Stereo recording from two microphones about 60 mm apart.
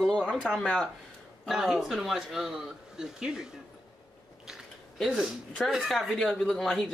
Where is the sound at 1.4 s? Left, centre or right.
Centre.